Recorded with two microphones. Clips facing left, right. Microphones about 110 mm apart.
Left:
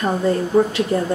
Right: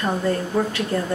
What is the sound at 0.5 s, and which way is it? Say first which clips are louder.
Speech: left 8 dB; 15° left (ahead or behind).